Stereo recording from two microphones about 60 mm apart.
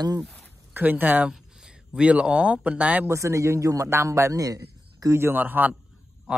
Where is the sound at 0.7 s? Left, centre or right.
Right.